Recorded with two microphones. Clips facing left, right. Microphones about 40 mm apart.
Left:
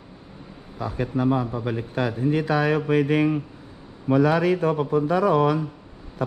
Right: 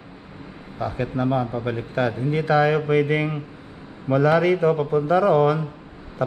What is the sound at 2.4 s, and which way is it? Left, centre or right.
Speech, right.